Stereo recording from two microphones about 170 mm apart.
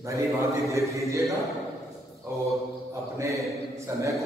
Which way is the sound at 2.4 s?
15° right (ahead or behind).